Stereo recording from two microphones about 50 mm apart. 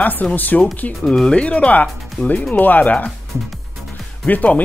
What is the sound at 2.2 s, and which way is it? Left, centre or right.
Speech, left.